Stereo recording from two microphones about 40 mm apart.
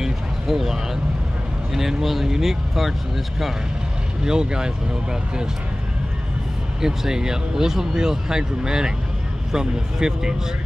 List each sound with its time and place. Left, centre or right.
0.0 s a sound: centre
1.7 s speech: centre
4.2 s speech: centre
6.8 s speech: centre